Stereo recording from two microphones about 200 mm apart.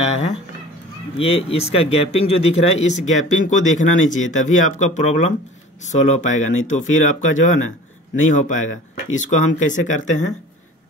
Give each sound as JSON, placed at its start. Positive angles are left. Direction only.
{"t": 0.0, "sound": "a sound", "side_deg": 35}
{"t": 1.1, "sound": "speech", "side_deg": 30}
{"t": 4.2, "sound": "speech", "side_deg": 85}
{"t": 4.7, "sound": "speech", "side_deg": 35}